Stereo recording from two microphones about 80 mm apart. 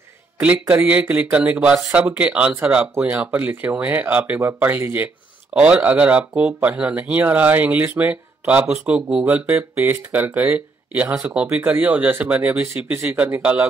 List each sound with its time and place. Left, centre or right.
0.4 s speech: right
12.9 s speech: right
13.2 s speech: centre